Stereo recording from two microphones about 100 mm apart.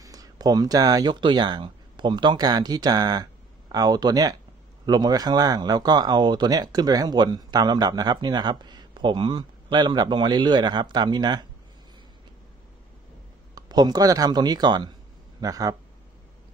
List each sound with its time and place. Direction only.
0.0 s speech: 40° right (ahead or behind)
13.6 s speech: 40° right (ahead or behind)